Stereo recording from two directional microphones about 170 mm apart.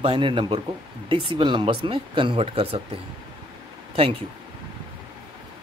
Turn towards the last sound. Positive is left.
turn(degrees=-35)  # may be behind; listen again after turning